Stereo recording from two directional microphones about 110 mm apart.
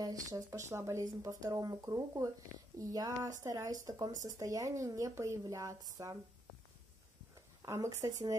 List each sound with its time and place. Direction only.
0.0 s a woman's voice: 30° right (ahead or behind)
7.6 s a woman's voice: 30° right (ahead or behind)